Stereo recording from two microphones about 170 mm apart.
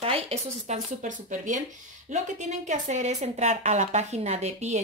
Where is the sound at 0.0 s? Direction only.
35° right (ahead or behind).